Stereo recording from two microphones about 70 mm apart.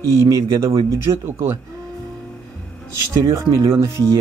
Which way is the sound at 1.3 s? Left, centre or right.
Right.